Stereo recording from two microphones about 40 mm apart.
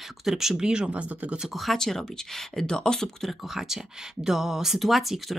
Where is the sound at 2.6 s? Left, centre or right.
Centre.